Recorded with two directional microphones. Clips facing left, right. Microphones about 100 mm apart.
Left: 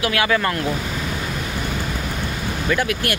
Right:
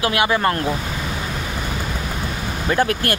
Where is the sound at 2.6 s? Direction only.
35° right (ahead or behind).